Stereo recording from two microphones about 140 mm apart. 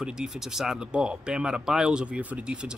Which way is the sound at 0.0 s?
5° right (ahead or behind).